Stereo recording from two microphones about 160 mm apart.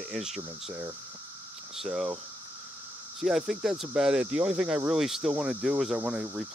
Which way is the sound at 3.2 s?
Centre (ahead or behind).